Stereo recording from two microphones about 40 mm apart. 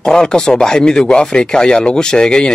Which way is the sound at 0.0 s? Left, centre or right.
Centre.